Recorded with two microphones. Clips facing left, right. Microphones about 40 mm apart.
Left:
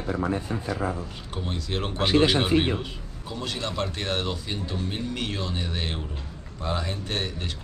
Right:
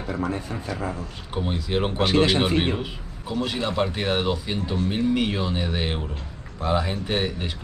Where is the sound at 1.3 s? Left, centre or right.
Centre.